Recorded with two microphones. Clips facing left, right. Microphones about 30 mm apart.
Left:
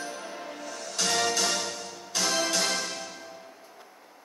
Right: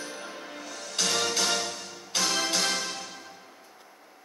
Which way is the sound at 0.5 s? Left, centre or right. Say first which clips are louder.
Right 2 dB; right.